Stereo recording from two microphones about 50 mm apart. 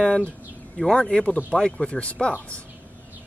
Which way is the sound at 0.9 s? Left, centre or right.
Centre.